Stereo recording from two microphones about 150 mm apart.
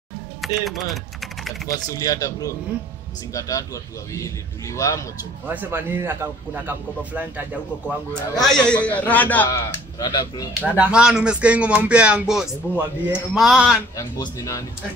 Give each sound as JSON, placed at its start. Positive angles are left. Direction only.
{"t": 0.6, "sound": "speech", "side_deg": 0}
{"t": 1.9, "sound": "a man's voice", "side_deg": 25}
{"t": 5.5, "sound": "speech", "side_deg": -15}
{"t": 8.1, "sound": "a man's voice", "side_deg": 5}
{"t": 9.5, "sound": "a man's voice", "side_deg": 25}
{"t": 10.6, "sound": "speech", "side_deg": -10}
{"t": 13.9, "sound": "a man's voice", "side_deg": 20}